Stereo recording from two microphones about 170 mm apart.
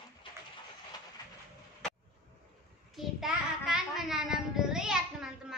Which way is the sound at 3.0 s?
Centre (ahead or behind).